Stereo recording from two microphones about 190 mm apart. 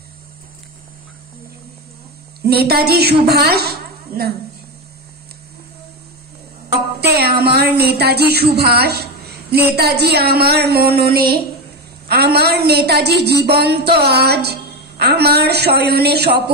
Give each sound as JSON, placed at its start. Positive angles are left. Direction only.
{"t": 2.4, "sound": "a woman's voice", "side_deg": -55}
{"t": 7.0, "sound": "a woman's voice", "side_deg": -55}